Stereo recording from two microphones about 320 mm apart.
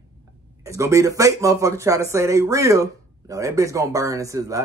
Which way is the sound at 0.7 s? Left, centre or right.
Centre.